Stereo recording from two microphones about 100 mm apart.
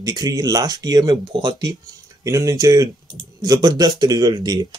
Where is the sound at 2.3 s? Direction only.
35° right (ahead or behind).